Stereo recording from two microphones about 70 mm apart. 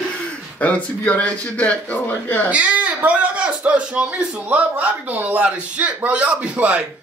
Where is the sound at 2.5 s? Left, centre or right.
Centre.